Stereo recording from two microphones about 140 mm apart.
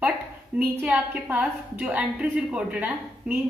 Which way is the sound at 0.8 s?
10° right (ahead or behind).